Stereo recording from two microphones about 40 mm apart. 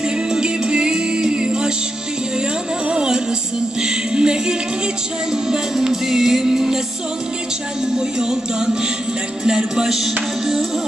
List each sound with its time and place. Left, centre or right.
0.3 s music: right
2.9 s music: right
8.2 s music: centre